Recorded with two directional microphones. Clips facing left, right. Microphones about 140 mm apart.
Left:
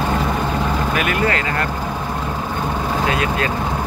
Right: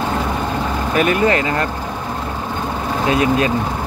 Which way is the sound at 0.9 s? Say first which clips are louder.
Right 8 dB; 25° right (ahead or behind).